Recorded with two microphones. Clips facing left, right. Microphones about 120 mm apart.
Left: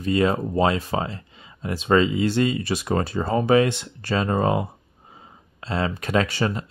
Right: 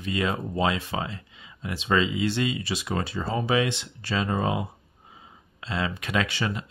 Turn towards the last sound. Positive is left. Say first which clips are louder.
# left 5 dB
turn(degrees=40)  # may be behind; listen again after turning